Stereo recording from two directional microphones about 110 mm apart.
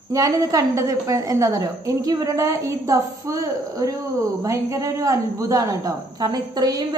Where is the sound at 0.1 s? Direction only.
35° right (ahead or behind).